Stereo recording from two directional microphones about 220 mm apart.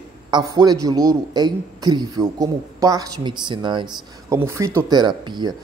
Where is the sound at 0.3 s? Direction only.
20° right (ahead or behind).